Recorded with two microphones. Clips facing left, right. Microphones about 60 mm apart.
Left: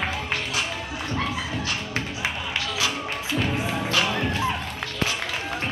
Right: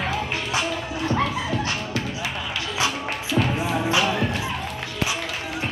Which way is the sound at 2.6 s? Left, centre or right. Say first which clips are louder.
Right 3 dB; right.